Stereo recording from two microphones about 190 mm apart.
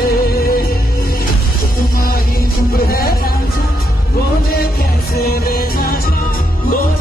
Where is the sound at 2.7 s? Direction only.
50° left (ahead or behind).